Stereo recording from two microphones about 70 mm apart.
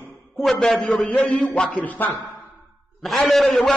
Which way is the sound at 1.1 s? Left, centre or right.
Centre.